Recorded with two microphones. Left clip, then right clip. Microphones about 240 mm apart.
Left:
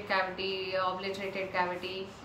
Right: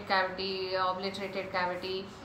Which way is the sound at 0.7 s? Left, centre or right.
Centre.